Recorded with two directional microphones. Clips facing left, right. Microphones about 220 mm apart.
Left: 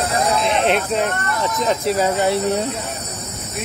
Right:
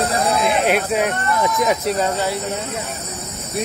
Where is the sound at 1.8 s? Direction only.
Centre (ahead or behind).